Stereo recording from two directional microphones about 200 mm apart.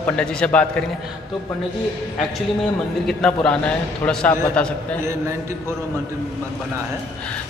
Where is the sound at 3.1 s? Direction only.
5° left (ahead or behind).